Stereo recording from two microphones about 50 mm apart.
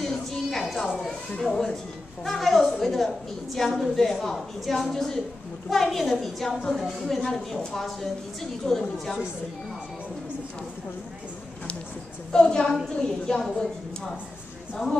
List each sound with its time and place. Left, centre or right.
0.0 s music: centre
1.5 s a woman's voice: centre
6.8 s a woman's voice: centre
7.2 s a woman's voice: centre
12.3 s a woman's voice: centre